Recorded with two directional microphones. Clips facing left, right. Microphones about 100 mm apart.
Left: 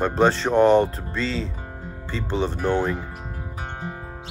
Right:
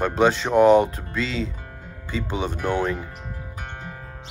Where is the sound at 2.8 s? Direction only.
10° left (ahead or behind).